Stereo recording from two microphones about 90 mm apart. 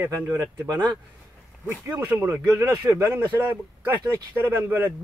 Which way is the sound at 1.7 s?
25° right (ahead or behind).